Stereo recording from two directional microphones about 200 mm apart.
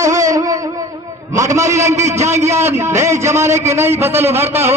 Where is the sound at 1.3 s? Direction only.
15° right (ahead or behind).